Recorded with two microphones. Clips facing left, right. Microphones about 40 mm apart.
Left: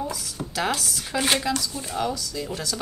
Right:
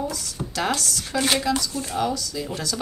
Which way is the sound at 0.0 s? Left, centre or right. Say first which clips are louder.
Right 1 dB; centre.